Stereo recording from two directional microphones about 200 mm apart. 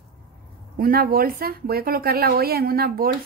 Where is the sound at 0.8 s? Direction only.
45° right (ahead or behind).